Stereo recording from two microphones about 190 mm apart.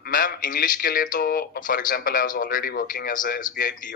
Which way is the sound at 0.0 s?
50° left (ahead or behind).